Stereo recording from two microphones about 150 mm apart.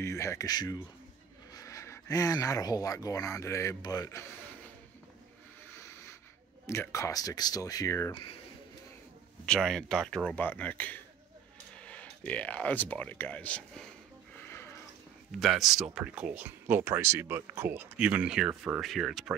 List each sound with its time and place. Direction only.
0.0 s speech: 20° left (ahead or behind)
6.6 s speech: 20° left (ahead or behind)
9.5 s speech: 5° left (ahead or behind)
15.3 s speech: centre (ahead or behind)